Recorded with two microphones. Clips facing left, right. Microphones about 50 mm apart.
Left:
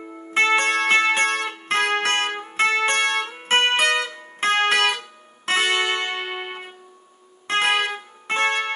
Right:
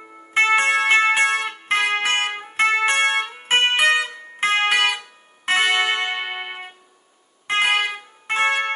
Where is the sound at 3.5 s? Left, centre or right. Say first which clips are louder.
Right 1 dB; centre.